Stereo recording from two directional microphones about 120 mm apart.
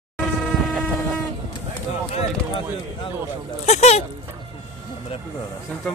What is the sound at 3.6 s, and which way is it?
Speech, 65° left (ahead or behind).